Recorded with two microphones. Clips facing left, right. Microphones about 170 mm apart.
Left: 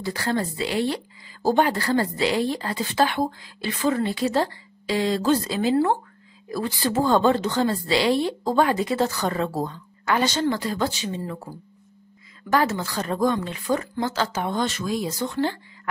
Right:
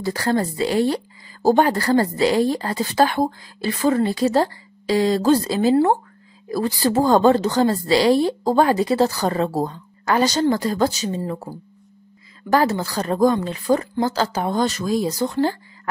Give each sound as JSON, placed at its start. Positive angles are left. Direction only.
{"t": 0.0, "sound": "speech", "side_deg": -40}